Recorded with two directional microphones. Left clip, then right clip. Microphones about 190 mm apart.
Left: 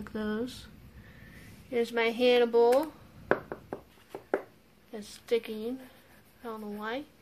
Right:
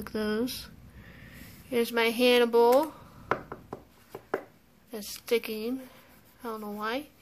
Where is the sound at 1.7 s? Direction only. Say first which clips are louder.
Right 2 dB; 20° right (ahead or behind).